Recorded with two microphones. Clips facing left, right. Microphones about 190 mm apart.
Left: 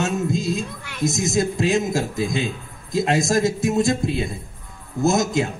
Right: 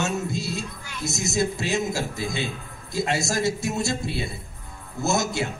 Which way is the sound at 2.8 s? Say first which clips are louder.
Left 6 dB; 90° left.